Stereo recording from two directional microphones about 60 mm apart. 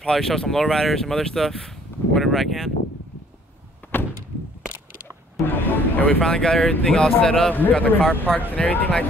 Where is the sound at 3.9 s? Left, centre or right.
Left.